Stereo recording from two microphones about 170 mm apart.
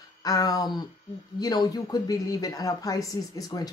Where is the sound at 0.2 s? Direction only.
20° left (ahead or behind).